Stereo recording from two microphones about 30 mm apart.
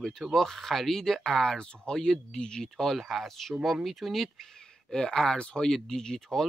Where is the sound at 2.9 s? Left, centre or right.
Centre.